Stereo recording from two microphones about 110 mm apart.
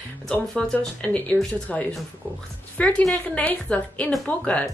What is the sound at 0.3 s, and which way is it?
Speech, 5° left (ahead or behind).